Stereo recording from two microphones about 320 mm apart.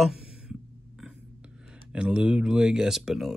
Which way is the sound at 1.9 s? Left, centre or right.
Centre.